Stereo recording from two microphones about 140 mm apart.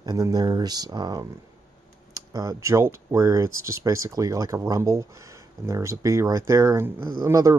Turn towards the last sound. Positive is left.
turn(degrees=-20)  # may be behind; listen again after turning